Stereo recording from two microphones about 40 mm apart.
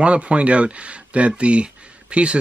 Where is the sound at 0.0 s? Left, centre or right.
Right.